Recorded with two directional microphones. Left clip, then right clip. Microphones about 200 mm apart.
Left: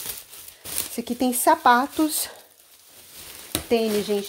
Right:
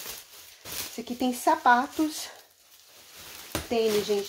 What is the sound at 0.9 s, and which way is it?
Speech, 50° left (ahead or behind).